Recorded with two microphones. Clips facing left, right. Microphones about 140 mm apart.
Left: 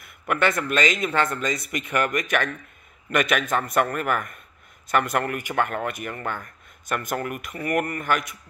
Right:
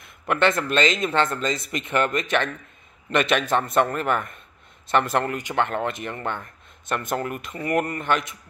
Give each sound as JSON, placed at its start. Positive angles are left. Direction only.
{"t": 0.0, "sound": "speech", "side_deg": -25}